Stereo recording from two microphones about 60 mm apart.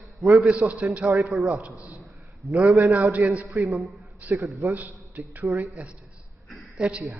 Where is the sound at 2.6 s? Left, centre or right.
Right.